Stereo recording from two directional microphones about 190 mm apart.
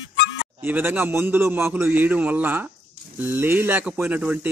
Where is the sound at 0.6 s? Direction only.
10° right (ahead or behind).